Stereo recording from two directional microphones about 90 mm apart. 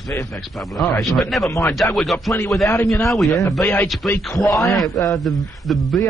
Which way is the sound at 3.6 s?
30° left (ahead or behind).